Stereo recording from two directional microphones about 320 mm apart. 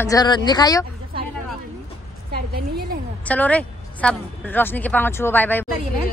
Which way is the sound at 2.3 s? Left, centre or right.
Right.